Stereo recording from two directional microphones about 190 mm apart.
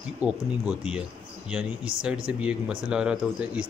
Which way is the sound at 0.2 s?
5° right (ahead or behind).